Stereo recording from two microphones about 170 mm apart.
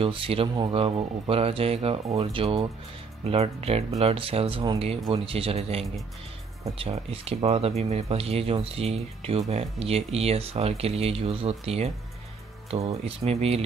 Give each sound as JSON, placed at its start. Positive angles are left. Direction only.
{"t": 0.0, "sound": "speech", "side_deg": -30}
{"t": 13.0, "sound": "speech", "side_deg": -35}